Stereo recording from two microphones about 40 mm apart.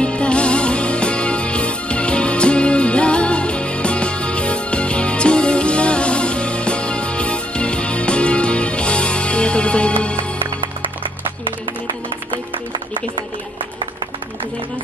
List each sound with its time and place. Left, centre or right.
0.0 s music: left